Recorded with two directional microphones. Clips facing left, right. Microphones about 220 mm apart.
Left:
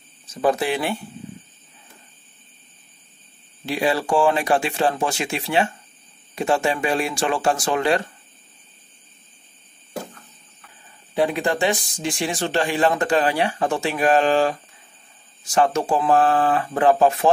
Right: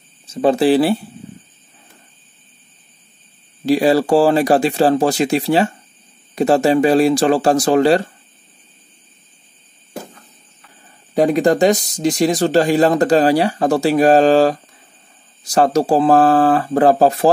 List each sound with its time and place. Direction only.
0.3 s speech: 25° right (ahead or behind)
3.6 s speech: 40° right (ahead or behind)
11.1 s speech: 40° right (ahead or behind)